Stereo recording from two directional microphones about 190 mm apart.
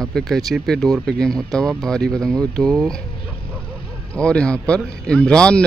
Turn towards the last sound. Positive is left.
turn(degrees=5)  # may be behind; listen again after turning